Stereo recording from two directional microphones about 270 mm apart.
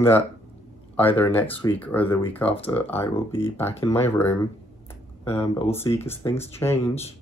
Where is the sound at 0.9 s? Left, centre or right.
Centre.